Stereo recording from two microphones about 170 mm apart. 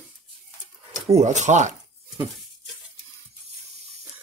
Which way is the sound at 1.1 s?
45° right (ahead or behind).